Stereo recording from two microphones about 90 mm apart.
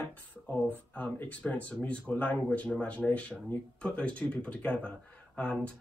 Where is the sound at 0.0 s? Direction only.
15° left (ahead or behind).